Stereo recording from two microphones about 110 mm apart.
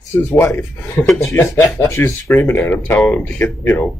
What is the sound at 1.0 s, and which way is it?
A man's voice, 25° left (ahead or behind).